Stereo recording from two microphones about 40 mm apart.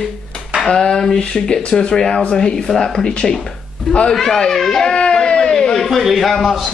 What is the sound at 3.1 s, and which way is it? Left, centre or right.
Speech, left.